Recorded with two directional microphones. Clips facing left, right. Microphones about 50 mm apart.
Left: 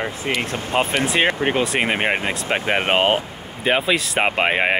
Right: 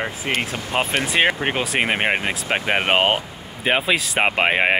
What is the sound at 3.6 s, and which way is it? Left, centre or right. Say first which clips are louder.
Speech: left 1 dB; centre.